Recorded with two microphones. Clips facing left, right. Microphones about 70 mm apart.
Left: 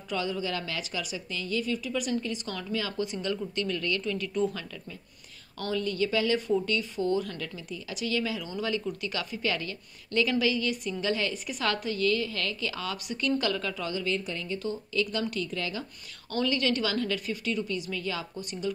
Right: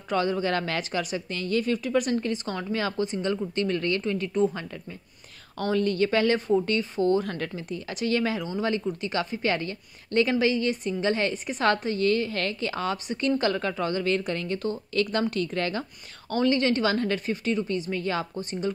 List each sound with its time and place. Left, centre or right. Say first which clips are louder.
0.1 s a woman's voice: right 6 dB; right
5.6 s a woman's voice: right 5 dB; right
16.3 s a woman's voice: right 5 dB; right